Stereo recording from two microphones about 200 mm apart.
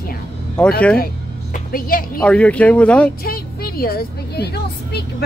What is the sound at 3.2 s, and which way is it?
A woman's voice, 50° left (ahead or behind).